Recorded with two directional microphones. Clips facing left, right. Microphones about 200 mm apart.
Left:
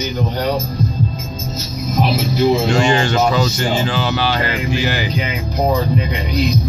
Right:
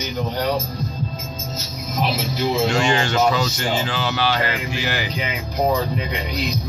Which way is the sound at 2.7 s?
35° left (ahead or behind).